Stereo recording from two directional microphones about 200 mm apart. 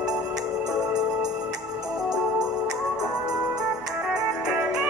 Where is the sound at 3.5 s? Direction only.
5° right (ahead or behind).